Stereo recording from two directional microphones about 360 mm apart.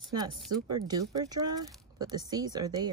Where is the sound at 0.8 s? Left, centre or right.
Centre.